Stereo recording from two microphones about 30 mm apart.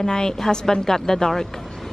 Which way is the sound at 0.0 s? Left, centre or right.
Centre.